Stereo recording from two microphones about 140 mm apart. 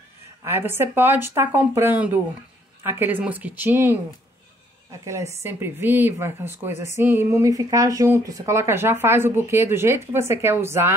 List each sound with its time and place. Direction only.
0.4 s speech: 15° right (ahead or behind)
5.0 s speech: 20° right (ahead or behind)